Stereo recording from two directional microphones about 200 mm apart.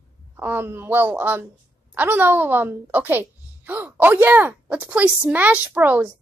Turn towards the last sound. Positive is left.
turn(degrees=-10)  # may be behind; listen again after turning